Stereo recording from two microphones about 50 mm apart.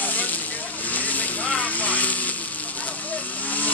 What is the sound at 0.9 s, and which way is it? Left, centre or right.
Vehicle, left.